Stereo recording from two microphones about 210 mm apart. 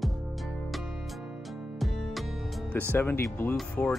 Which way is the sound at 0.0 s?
Centre (ahead or behind).